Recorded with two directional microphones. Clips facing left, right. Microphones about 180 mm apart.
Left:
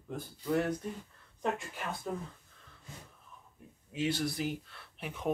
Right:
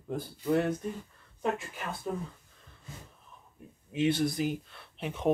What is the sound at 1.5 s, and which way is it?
Speech, centre (ahead or behind).